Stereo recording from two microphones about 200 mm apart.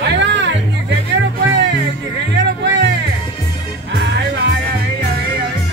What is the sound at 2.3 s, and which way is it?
Music, 60° right (ahead or behind).